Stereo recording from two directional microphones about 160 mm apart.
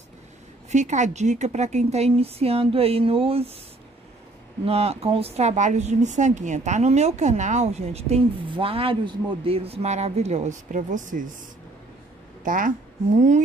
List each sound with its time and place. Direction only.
0.7 s a woman's voice: 50° right (ahead or behind)
4.6 s speech: 40° right (ahead or behind)
12.4 s a woman's voice: 55° right (ahead or behind)